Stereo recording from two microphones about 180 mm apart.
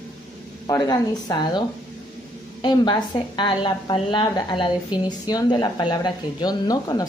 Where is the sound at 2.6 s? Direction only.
25° left (ahead or behind).